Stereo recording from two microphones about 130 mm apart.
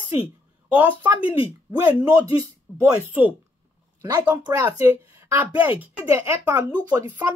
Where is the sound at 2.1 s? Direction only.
30° right (ahead or behind).